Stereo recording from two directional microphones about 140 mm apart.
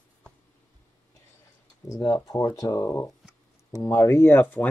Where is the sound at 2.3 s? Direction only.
25° left (ahead or behind).